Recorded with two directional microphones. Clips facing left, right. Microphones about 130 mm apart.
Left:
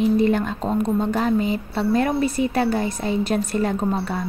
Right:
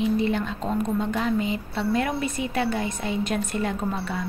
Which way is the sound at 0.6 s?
35° left (ahead or behind).